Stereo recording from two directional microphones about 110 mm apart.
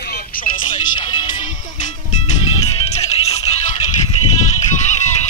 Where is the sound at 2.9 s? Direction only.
80° left.